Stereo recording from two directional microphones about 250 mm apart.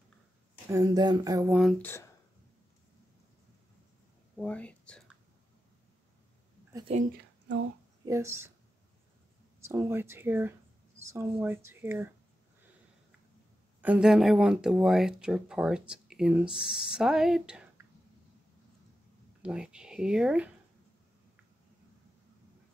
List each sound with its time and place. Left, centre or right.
0.7 s speech: centre
1.6 s speech: centre
4.4 s speech: centre
6.7 s a sound: centre
8.0 s speech: centre
9.6 s speech: centre
13.7 s speech: centre
19.4 s speech: centre